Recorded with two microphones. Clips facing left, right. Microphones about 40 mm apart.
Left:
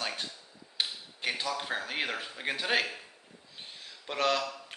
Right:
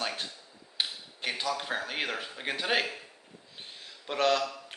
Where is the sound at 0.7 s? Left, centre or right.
Centre.